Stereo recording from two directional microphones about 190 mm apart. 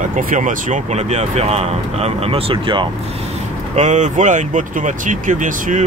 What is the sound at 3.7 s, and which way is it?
Speech, 40° right (ahead or behind).